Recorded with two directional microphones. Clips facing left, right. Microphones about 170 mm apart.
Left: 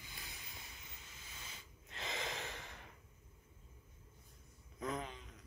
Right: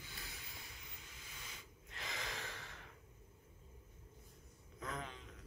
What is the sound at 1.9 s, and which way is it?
Snort, 25° left (ahead or behind).